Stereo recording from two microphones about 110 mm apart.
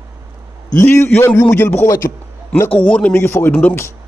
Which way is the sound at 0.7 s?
25° left (ahead or behind).